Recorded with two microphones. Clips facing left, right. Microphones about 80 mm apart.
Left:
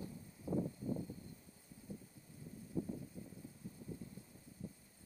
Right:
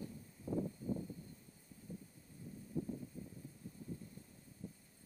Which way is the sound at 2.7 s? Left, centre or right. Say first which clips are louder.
Even; left.